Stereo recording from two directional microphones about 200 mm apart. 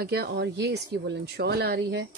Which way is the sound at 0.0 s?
55° right (ahead or behind).